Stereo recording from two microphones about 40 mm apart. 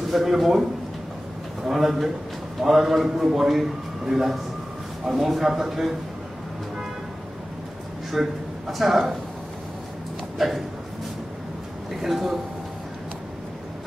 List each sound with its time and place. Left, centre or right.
0.1 s a man's voice: centre
1.7 s a man's voice: centre
8.1 s a man's voice: centre
10.4 s a man's voice: centre
11.9 s a man's voice: centre